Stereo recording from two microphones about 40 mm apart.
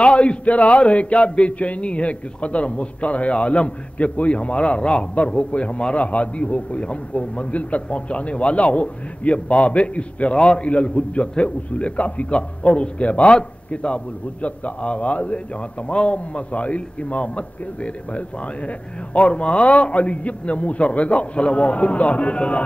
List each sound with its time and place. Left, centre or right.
0.0 s a man's voice: left